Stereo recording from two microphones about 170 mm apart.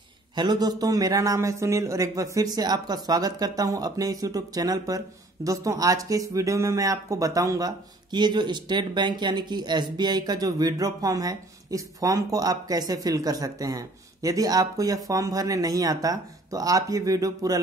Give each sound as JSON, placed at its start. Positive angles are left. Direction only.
{"t": 0.4, "sound": "speech", "side_deg": -25}